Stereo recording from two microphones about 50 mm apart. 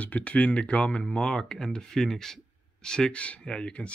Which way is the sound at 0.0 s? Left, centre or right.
Left.